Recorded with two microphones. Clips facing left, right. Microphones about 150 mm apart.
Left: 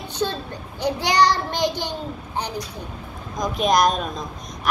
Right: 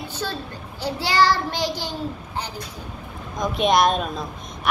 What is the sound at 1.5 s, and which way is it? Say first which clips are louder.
Speech: left 3 dB; 10° right (ahead or behind).